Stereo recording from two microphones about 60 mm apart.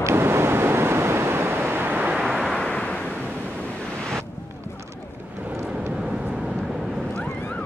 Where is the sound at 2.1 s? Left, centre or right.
Centre.